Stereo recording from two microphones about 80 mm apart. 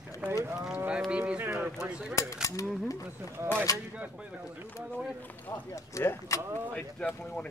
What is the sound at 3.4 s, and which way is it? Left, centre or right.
Speech, right.